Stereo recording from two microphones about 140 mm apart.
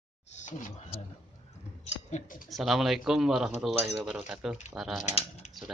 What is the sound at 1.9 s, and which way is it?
Speech, 55° left (ahead or behind).